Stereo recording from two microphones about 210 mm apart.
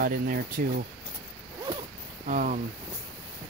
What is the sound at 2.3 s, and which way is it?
Speech, 40° right (ahead or behind).